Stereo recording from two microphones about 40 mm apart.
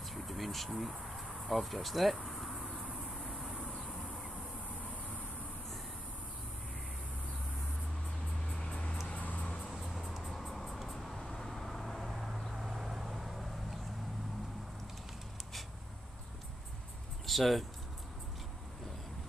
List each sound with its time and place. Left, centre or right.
0.1 s speech: centre
2.1 s a sound: centre
3.3 s vehicle: centre
9.0 s music: left
9.7 s music: centre
10.8 s vehicle: centre
17.3 s speech: centre